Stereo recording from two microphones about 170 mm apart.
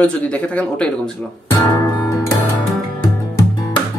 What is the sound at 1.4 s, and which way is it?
Guitar, 20° left (ahead or behind).